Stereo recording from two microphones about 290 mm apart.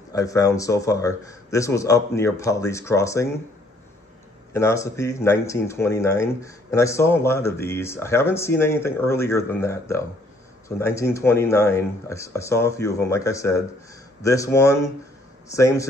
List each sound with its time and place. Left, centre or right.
0.1 s speech: centre
4.6 s speech: centre